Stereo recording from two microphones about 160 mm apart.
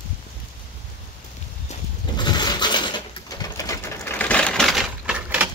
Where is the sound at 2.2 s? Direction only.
25° left (ahead or behind).